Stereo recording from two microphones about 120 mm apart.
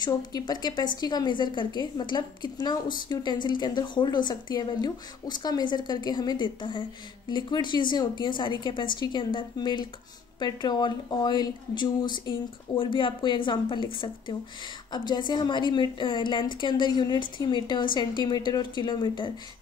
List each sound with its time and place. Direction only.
0.0 s a woman's voice: 35° left (ahead or behind)